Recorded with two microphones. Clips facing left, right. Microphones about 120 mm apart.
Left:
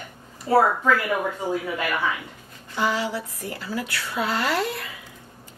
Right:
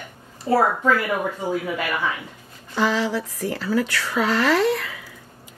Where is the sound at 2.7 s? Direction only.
90° right.